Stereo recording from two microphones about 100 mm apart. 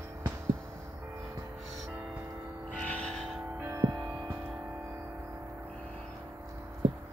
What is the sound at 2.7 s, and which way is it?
Music, 10° left (ahead or behind).